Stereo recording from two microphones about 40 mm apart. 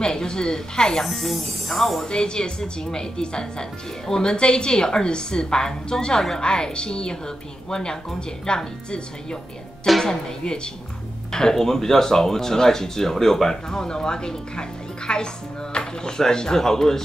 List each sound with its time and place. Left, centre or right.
0.0 s a woman's voice: centre
1.0 s speech: centre
2.0 s a woman's voice: left
6.4 s a woman's voice: left